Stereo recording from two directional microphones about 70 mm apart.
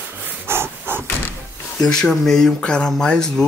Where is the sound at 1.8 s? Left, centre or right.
Centre.